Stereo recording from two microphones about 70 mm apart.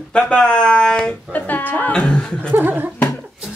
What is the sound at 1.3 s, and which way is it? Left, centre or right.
Speech, left.